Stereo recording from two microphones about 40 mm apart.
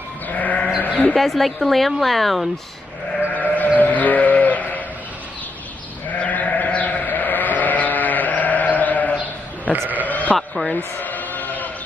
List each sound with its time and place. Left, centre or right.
0.4 s sheep: left
1.1 s a woman's voice: centre
3.3 s sheep: left
6.1 s sheep: left
10.3 s a man's voice: centre
11.0 s a sound: left